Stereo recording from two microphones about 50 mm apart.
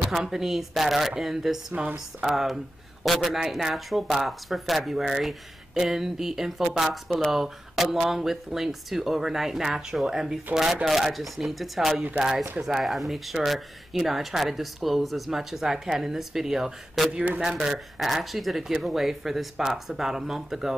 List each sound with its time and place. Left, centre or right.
0.2 s speech: centre
1.7 s speech: right
2.2 s speech: centre